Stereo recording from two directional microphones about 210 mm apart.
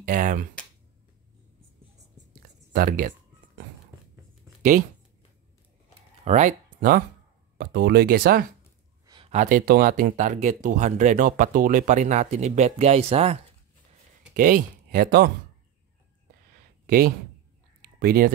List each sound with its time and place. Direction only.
0.0 s speech: 40° right (ahead or behind)
2.7 s speech: 40° right (ahead or behind)
6.2 s speech: 35° right (ahead or behind)
9.0 s a sound: 20° right (ahead or behind)
9.3 s speech: 40° right (ahead or behind)
16.8 s speech: 45° right (ahead or behind)
17.8 s a sound: 45° right (ahead or behind)